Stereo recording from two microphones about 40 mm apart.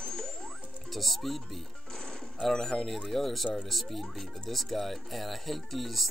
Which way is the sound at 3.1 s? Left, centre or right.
Centre.